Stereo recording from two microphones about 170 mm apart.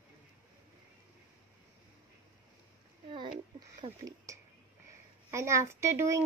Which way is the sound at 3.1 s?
30° right (ahead or behind).